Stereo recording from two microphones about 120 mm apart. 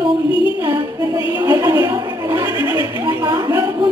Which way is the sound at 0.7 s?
30° right (ahead or behind).